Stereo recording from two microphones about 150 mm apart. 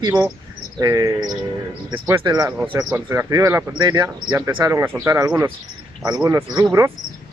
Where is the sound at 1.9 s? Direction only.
15° right (ahead or behind).